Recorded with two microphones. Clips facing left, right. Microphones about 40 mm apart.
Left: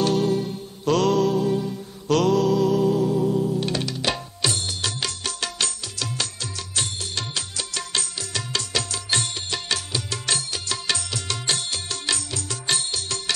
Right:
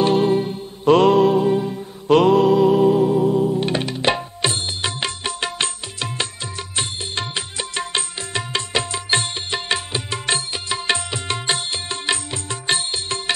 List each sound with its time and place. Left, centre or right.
0.0 s music: right